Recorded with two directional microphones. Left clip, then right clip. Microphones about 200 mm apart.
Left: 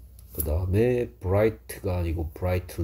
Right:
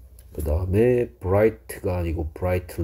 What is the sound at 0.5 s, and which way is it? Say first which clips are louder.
Speech: right 4 dB; 25° right (ahead or behind).